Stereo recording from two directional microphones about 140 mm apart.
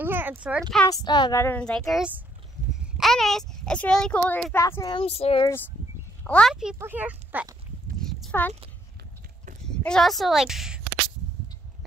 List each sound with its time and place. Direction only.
0.0 s speech: 15° right (ahead or behind)
0.8 s speech: 30° left (ahead or behind)
1.6 s a child's voice: 5° left (ahead or behind)
4.6 s speech: 20° left (ahead or behind)
4.9 s speech: 45° left (ahead or behind)
6.2 s a child's voice: 10° left (ahead or behind)
6.5 s a child's voice: 5° right (ahead or behind)
8.0 s clip-clop: 5° left (ahead or behind)
9.7 s a woman's voice: 5° left (ahead or behind)